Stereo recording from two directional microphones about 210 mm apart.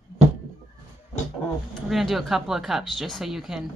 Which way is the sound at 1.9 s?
Centre (ahead or behind).